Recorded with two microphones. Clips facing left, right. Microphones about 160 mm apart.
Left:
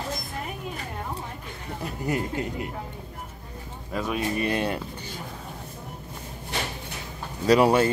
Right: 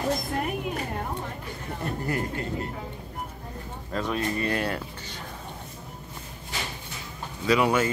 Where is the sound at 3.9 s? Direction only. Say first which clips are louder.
Left 1 dB; 10° left (ahead or behind).